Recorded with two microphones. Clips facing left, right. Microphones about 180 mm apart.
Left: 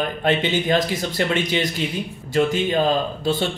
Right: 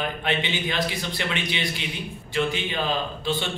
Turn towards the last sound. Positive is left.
turn(degrees=40)  # may be behind; listen again after turning